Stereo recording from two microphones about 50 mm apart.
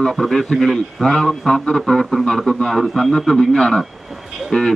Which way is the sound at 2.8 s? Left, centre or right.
Centre.